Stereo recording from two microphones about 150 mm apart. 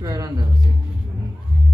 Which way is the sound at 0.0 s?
25° right (ahead or behind).